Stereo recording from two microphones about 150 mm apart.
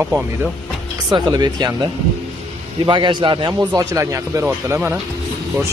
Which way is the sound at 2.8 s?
30° right (ahead or behind).